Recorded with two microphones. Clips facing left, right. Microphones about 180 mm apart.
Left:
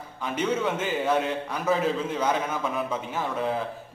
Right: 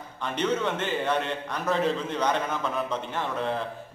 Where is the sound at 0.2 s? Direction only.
5° left (ahead or behind).